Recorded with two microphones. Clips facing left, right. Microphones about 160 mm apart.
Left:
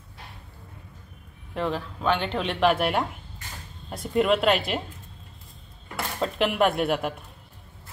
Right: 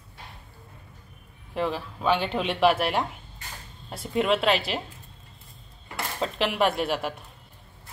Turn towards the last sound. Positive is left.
turn(degrees=0)  # may be behind; listen again after turning